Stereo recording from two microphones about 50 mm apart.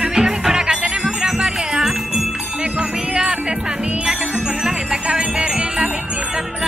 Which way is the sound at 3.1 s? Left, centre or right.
Centre.